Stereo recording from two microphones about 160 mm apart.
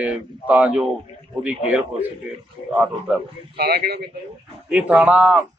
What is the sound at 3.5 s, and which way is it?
Speech, 75° right (ahead or behind).